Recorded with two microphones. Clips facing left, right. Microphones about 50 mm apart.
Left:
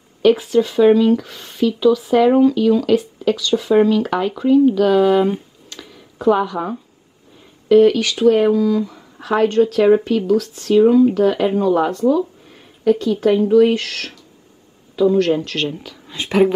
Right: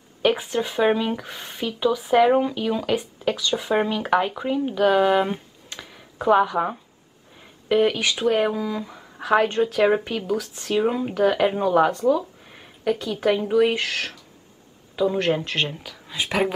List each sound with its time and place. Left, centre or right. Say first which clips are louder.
0.2 s speech: left 8 dB; centre
10.0 s speech: left 9 dB; centre
12.4 s a sound: left 8 dB; centre
12.9 s speech: left 6 dB; centre; by 15.7 s right
15.7 s speech: left 4 dB; centre